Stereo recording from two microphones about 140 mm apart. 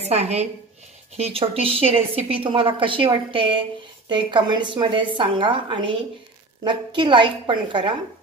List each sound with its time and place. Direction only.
0.0 s a woman's voice: 50° right (ahead or behind); by 7.9 s 35° right (ahead or behind)